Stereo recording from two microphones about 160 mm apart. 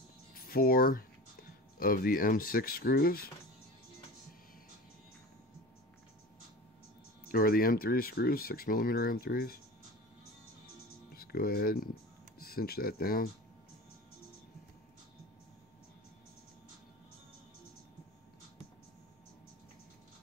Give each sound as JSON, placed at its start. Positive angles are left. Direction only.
{"t": 0.3, "sound": "speech", "side_deg": 65}
{"t": 7.2, "sound": "speech", "side_deg": 65}
{"t": 11.1, "sound": "speech", "side_deg": 70}